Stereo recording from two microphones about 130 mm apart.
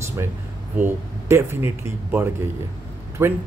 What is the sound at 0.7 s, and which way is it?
Speech, 15° right (ahead or behind).